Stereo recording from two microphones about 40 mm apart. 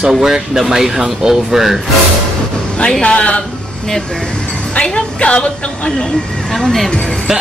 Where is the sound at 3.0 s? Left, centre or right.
Left.